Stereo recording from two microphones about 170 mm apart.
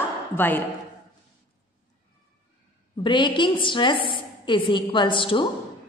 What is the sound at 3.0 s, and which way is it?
A woman's voice, 30° left (ahead or behind).